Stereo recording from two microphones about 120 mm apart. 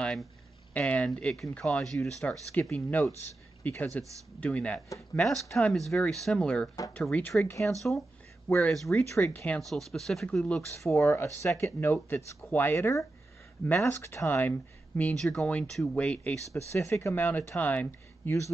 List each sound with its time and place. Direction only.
0.0 s a sound: 5° left (ahead or behind)
0.7 s speech: 10° left (ahead or behind)
11.0 s speech: 25° left (ahead or behind)
16.5 s speech: 25° left (ahead or behind)